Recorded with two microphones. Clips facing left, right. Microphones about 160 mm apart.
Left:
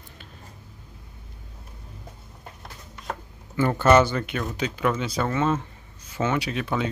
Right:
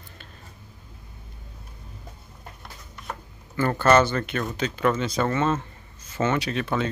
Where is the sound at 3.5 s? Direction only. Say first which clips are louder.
Left 1 dB; 15° left (ahead or behind).